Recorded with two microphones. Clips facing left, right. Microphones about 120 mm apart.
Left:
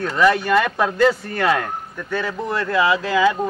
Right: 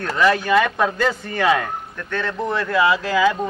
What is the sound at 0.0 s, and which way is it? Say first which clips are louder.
Speech: left 1 dB; centre (ahead or behind).